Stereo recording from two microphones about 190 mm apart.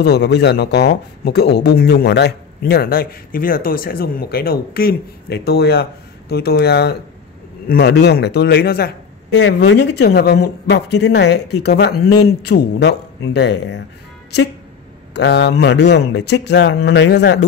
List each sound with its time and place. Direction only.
0.0 s a man's voice: 65° left (ahead or behind)
15.1 s a man's voice: 65° left (ahead or behind)